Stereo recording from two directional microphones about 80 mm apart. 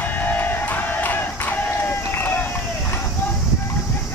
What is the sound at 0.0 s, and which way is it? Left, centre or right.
Music, left.